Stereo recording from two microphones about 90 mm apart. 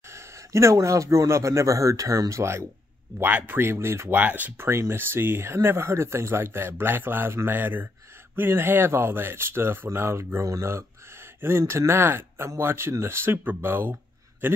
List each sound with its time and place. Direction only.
0.1 s speech: 30° right (ahead or behind)
3.2 s speech: 20° right (ahead or behind)